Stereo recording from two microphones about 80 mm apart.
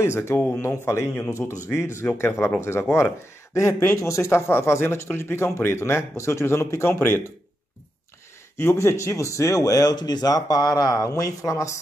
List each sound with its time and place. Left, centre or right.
0.0 s speech: left
8.5 s speech: left